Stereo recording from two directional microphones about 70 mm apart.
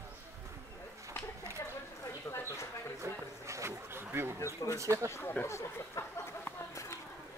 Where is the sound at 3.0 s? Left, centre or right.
Right.